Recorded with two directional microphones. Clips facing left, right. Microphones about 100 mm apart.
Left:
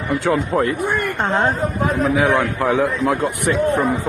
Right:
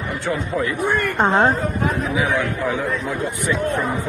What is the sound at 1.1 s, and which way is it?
Speech, 25° right (ahead or behind).